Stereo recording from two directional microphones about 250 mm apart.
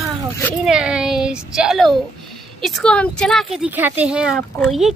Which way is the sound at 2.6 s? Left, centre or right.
Centre.